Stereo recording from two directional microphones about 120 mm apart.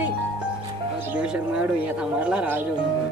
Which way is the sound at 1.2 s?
10° right (ahead or behind).